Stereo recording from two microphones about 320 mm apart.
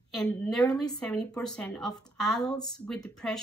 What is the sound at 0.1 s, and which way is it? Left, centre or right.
A woman's voice, centre.